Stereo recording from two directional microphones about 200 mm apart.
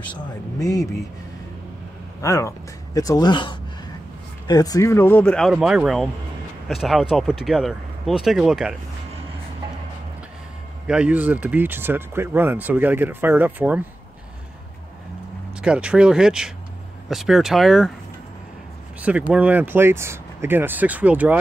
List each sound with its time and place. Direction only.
0.6 s speech: 15° left (ahead or behind)
2.2 s speech: 15° left (ahead or behind); by 8.7 s centre (ahead or behind)
10.9 s speech: 5° right (ahead or behind)
15.6 s speech: 5° right (ahead or behind)
18.9 s speech: 5° right (ahead or behind)